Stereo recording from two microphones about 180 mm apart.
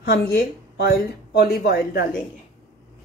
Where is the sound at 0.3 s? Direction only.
60° left (ahead or behind).